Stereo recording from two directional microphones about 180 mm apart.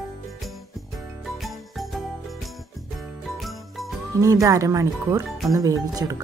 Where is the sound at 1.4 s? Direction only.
Centre (ahead or behind).